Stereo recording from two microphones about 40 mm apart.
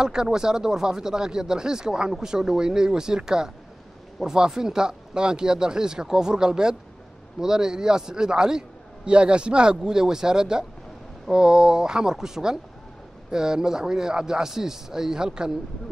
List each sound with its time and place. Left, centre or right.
0.0 s speech: centre